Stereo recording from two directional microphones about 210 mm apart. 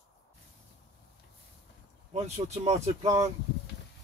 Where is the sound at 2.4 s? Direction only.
30° right (ahead or behind).